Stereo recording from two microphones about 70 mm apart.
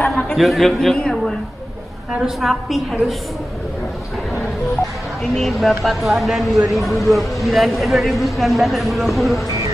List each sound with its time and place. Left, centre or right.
0.4 s a man's voice: centre
5.3 s a man's voice: centre